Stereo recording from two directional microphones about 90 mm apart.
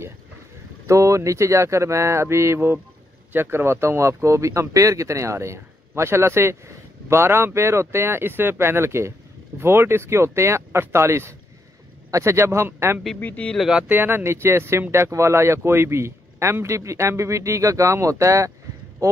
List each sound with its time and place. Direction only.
0.8 s speech: 35° right (ahead or behind)
13.2 s speech: 15° left (ahead or behind)
13.6 s speech: 5° right (ahead or behind)
13.8 s speech: 20° right (ahead or behind)